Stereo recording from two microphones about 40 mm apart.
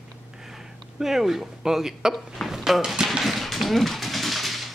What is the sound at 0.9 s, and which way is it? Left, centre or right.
Speech, centre.